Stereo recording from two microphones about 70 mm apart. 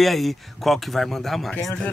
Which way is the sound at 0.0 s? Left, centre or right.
Centre.